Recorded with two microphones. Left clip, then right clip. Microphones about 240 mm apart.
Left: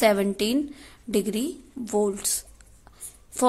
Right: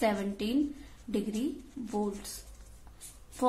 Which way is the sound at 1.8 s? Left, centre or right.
Left.